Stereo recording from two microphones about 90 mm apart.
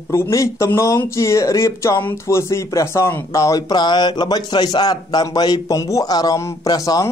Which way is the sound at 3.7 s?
55° left (ahead or behind).